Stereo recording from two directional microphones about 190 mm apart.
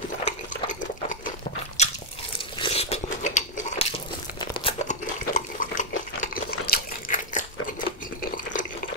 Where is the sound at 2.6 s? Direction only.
30° left (ahead or behind).